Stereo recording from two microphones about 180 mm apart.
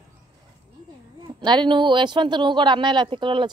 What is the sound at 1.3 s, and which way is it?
Speech, 25° right (ahead or behind).